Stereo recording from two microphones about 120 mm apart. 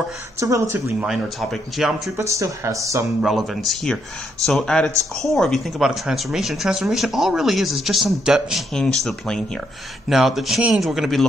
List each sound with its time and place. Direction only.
0.4 s speech: 30° right (ahead or behind)
1.0 s speech: centre (ahead or behind)
2.1 s speech: 25° right (ahead or behind)
3.2 s speech: centre (ahead or behind)